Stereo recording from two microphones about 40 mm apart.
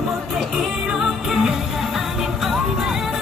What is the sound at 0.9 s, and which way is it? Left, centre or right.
Music, centre.